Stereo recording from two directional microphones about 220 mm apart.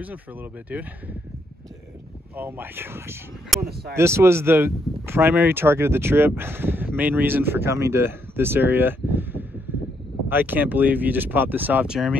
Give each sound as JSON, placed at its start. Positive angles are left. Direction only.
{"t": 0.0, "sound": "speech", "side_deg": -5}
{"t": 2.3, "sound": "speech", "side_deg": -10}
{"t": 3.6, "sound": "speech", "side_deg": -45}
{"t": 3.9, "sound": "speech", "side_deg": -10}